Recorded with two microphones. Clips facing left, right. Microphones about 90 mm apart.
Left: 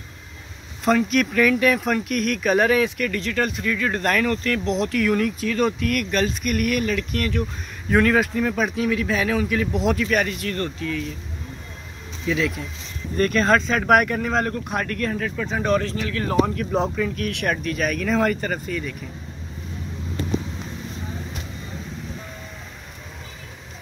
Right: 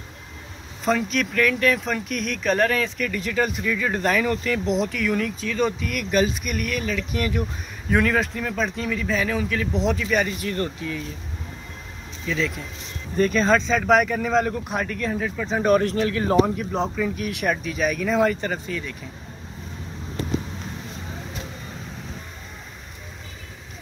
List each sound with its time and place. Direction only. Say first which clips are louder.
0.8 s speech: left 3 dB; 5° left (ahead or behind)
3.1 s speech: even; 10° right (ahead or behind)
7.9 s speech: left 3 dB; centre (ahead or behind)
10.5 s speech: left 1 dB; 20° right (ahead or behind)
12.3 s speech: left 3 dB; 5° left (ahead or behind); by 15.9 s 15° right (ahead or behind)
16.7 s speech: left 2 dB; centre (ahead or behind)